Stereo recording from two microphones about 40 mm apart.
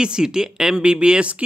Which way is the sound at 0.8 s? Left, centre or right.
Right.